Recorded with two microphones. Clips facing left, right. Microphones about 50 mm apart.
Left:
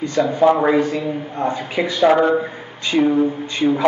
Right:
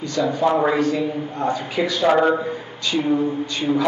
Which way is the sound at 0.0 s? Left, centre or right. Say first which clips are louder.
Left 5 dB; left.